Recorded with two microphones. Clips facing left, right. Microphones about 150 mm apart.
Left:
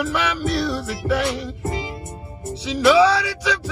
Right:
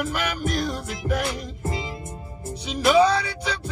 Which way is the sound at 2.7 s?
75° left (ahead or behind).